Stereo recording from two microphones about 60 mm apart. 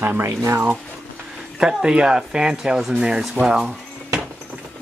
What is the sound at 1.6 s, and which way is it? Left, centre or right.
Speech, centre.